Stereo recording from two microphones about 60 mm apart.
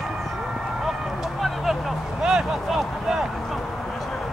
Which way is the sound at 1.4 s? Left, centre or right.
Centre.